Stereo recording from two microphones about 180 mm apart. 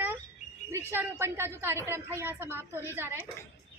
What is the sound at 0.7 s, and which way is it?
A woman's voice, 15° right (ahead or behind).